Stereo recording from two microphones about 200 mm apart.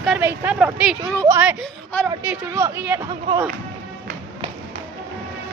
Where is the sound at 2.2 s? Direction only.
10° right (ahead or behind).